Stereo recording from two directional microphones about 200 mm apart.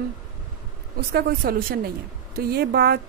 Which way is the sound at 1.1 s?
50° right (ahead or behind).